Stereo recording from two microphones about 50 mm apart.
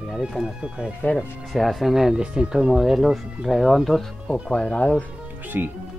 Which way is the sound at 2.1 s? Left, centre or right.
Centre.